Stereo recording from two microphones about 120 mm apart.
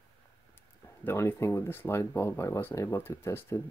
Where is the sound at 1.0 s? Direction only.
20° left (ahead or behind).